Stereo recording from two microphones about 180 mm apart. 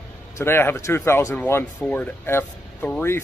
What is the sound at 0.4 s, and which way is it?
Speech, 15° left (ahead or behind).